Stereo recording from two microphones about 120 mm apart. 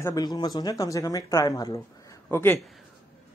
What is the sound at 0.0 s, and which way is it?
A man's voice, 35° left (ahead or behind).